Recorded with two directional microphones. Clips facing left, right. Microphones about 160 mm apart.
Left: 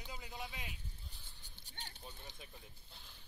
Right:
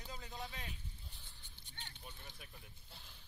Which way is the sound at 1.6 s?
40° left (ahead or behind).